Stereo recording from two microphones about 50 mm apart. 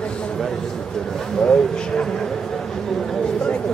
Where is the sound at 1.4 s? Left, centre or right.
Centre.